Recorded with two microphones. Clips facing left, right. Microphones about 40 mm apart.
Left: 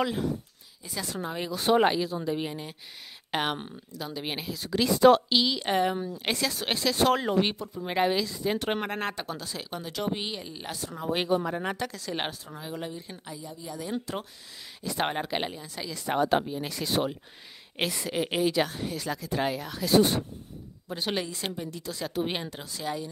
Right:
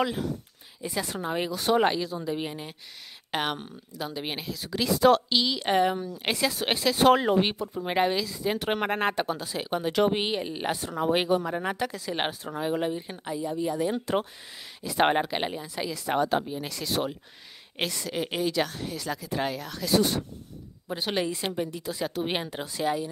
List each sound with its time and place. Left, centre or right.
0.0 s speech: centre
0.8 s speech: right
1.5 s speech: centre
3.9 s speech: centre
4.3 s speech: centre
8.0 s speech: centre
8.8 s speech: right
9.7 s speech: right
11.1 s speech: centre
12.4 s speech: right
15.0 s speech: right
15.9 s speech: centre
20.9 s speech: centre